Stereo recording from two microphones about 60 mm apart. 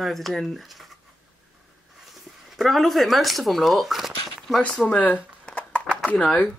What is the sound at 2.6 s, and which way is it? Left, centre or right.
Speech, centre.